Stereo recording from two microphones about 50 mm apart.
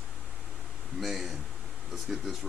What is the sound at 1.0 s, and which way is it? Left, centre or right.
Speech, centre.